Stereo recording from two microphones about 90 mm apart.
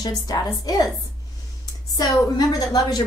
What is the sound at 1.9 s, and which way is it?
A woman's voice, 45° left (ahead or behind).